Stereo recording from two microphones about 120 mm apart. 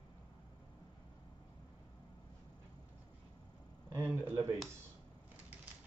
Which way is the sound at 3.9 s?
20° right (ahead or behind).